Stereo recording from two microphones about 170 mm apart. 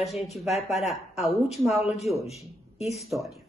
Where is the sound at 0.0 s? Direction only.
Centre (ahead or behind).